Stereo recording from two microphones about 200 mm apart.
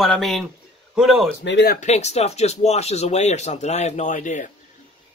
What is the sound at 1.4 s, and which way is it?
Speech, 60° left (ahead or behind).